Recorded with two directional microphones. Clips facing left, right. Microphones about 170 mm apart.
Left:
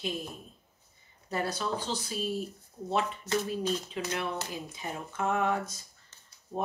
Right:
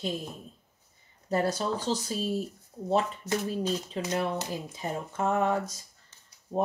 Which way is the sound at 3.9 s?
35° right (ahead or behind).